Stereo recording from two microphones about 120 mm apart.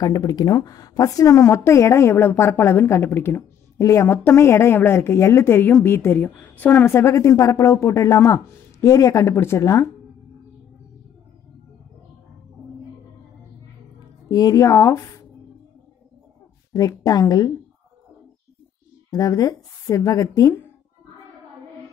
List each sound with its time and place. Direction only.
0.0 s a woman's voice: 30° left (ahead or behind)
13.9 s speech: 30° left (ahead or behind)
16.7 s a woman's voice: 30° left (ahead or behind)
19.0 s a woman's voice: 30° left (ahead or behind)